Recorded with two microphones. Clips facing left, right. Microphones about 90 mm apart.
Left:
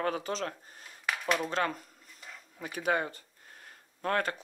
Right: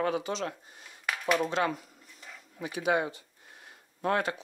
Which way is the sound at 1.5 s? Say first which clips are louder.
Right 2 dB; 40° left (ahead or behind).